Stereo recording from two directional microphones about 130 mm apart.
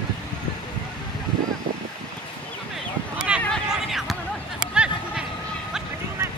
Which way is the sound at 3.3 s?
10° right (ahead or behind).